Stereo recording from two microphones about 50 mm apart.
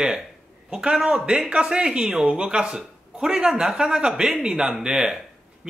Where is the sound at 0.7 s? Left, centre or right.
Centre.